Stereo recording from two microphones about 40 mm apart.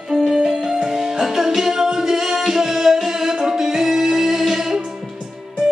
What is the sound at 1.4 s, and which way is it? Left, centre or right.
Music, centre.